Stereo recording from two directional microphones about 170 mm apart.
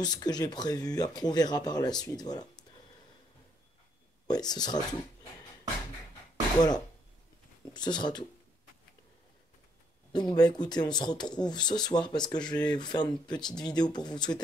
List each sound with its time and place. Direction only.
0.0 s speech: 25° left (ahead or behind)
4.3 s speech: 25° left (ahead or behind)
7.7 s speech: 25° left (ahead or behind)
10.1 s speech: 25° left (ahead or behind)